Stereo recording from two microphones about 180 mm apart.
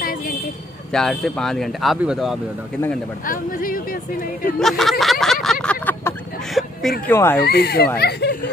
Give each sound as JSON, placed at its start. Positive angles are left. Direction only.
{"t": 0.9, "sound": "speech", "side_deg": 5}
{"t": 3.3, "sound": "speech", "side_deg": 50}
{"t": 4.6, "sound": "a sound", "side_deg": 0}
{"t": 7.1, "sound": "speech", "side_deg": 10}
{"t": 7.4, "sound": "speech", "side_deg": 65}